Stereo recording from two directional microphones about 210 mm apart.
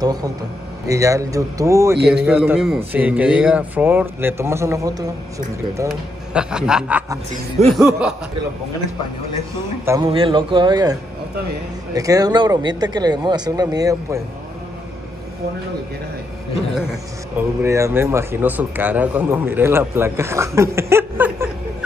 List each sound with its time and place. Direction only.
0.0 s speech: 20° right (ahead or behind)
5.9 s a man's voice: 5° right (ahead or behind)
10.0 s speech: 25° right (ahead or behind)
17.4 s speech: 15° right (ahead or behind)